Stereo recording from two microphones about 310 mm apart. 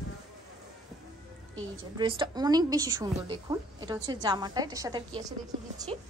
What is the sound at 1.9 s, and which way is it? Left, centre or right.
A woman's voice, centre.